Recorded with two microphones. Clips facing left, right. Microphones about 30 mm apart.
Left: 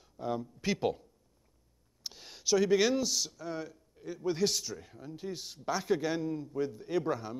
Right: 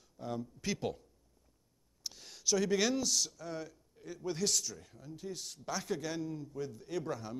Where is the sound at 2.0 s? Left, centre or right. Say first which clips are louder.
Left 3 dB; centre.